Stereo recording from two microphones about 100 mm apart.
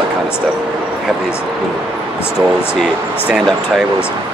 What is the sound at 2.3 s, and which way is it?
Speech, 5° right (ahead or behind).